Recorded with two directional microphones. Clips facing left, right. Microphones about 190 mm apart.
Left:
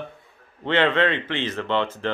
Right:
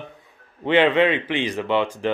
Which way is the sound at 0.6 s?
15° right (ahead or behind).